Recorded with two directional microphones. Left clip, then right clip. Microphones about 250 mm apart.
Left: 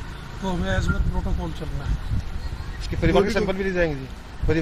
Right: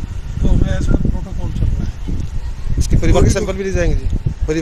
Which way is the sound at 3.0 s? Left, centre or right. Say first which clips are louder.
Right 3 dB; right.